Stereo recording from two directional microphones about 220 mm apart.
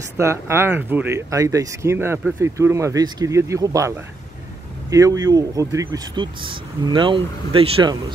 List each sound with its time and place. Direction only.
0.2 s speech: 10° right (ahead or behind)